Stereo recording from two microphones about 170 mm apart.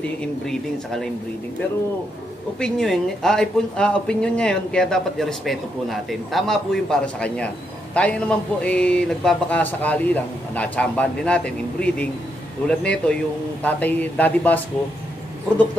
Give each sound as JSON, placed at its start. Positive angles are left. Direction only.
{"t": 0.2, "sound": "speech", "side_deg": 5}
{"t": 2.6, "sound": "a man's voice", "side_deg": 0}